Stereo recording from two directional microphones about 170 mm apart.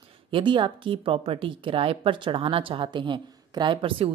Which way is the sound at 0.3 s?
30° right (ahead or behind).